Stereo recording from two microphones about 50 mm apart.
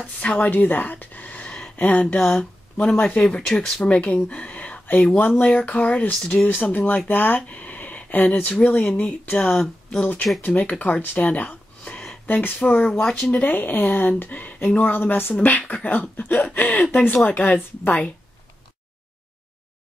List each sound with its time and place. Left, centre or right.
0.2 s a sound: left
1.8 s speech: left
9.6 s speech: centre
10.4 s speech: left
12.3 s speech: left
15.3 s speech: left